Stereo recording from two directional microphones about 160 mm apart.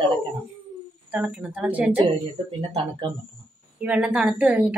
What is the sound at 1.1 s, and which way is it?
Speech, 5° right (ahead or behind).